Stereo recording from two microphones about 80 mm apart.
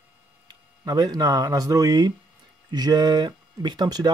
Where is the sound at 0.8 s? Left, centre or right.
Right.